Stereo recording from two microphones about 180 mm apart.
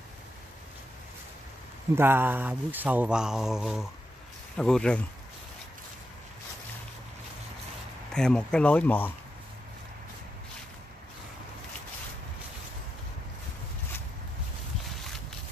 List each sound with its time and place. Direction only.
2.0 s speech: 10° right (ahead or behind); by 5.0 s 5° left (ahead or behind)
8.1 s speech: 5° left (ahead or behind)